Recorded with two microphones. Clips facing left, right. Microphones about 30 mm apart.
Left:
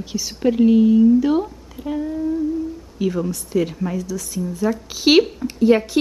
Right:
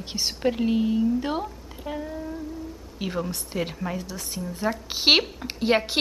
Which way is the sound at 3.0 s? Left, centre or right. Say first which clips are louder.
Left 10 dB; right.